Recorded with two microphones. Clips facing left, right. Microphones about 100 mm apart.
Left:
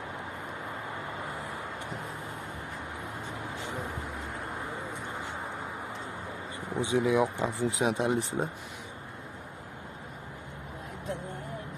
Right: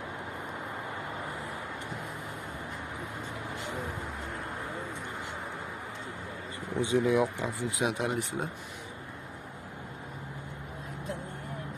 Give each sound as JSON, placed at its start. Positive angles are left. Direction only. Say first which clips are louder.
{"t": 6.7, "sound": "speech", "louder": "even", "side_deg": 15}
{"t": 7.3, "sound": "speech", "louder": "left 3 dB", "side_deg": 30}